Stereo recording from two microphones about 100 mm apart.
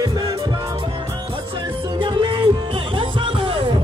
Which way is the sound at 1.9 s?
60° right (ahead or behind).